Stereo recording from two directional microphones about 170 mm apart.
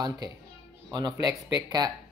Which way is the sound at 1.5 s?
25° right (ahead or behind).